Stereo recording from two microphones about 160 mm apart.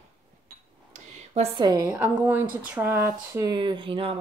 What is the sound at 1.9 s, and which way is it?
A woman's voice, 10° right (ahead or behind).